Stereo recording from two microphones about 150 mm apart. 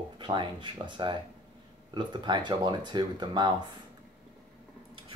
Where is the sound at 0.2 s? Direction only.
30° right (ahead or behind).